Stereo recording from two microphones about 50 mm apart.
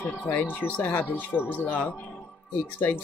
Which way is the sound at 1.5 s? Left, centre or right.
Left.